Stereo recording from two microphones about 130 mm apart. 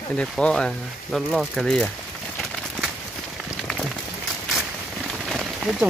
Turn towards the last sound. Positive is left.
turn(degrees=-5)  # may be behind; listen again after turning